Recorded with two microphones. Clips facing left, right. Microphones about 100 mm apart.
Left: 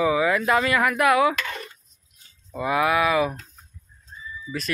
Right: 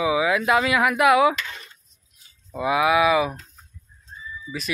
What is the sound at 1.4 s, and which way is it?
Speech, 55° left (ahead or behind).